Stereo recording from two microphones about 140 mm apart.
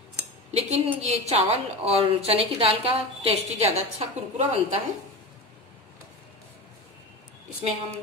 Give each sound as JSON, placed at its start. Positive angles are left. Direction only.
{"t": 0.5, "sound": "a woman's voice", "side_deg": -50}